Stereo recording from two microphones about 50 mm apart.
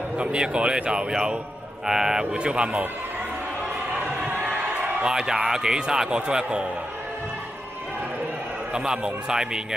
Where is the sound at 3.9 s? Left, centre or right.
Right.